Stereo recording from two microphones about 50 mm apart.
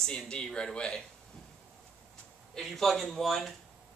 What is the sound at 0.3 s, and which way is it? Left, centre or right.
Speech, centre.